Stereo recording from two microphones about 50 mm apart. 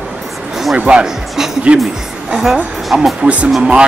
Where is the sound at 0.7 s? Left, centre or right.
Centre.